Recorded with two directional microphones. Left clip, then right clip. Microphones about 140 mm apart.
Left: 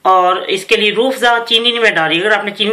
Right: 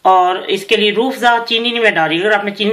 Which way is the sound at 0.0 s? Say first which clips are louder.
Even; 40° right (ahead or behind).